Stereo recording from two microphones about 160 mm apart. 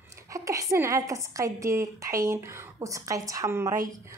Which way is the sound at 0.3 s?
20° right (ahead or behind).